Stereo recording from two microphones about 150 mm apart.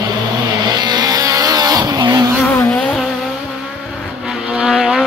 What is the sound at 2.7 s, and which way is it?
Vehicle, 5° left (ahead or behind).